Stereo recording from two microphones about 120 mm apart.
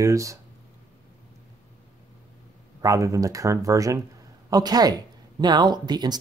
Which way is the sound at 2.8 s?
25° right (ahead or behind).